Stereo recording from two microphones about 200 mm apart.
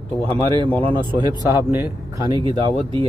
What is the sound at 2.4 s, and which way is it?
Speech, 25° right (ahead or behind).